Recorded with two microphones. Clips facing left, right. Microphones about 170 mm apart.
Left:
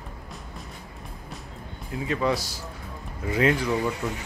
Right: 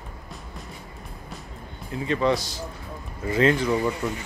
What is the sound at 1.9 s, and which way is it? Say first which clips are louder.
A man's voice: right 3 dB; 5° left (ahead or behind).